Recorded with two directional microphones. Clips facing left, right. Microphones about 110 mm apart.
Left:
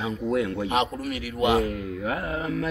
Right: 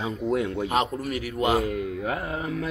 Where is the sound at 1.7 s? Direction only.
25° right (ahead or behind).